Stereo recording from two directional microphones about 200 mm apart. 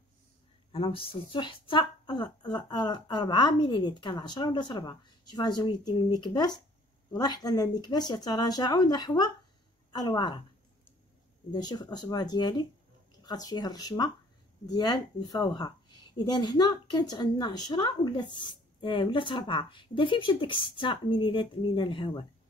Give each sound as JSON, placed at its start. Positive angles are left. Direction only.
{"t": 0.7, "sound": "speech", "side_deg": 25}
{"t": 11.5, "sound": "speech", "side_deg": 20}